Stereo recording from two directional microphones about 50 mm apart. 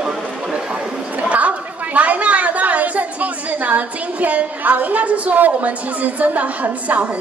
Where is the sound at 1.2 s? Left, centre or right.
Right.